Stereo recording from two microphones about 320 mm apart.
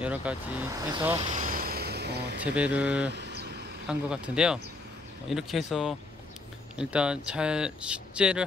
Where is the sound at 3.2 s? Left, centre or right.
Right.